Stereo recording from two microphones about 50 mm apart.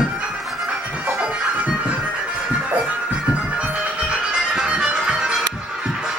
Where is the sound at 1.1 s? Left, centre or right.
Right.